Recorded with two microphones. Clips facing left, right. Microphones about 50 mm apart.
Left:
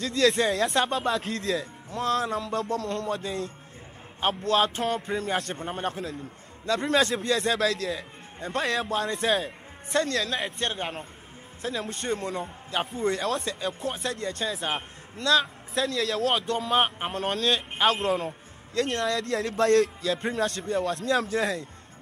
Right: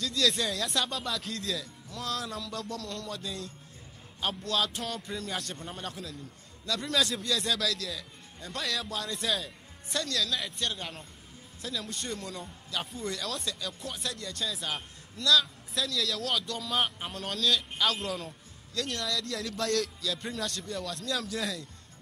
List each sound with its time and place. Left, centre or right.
0.0 s a man's voice: left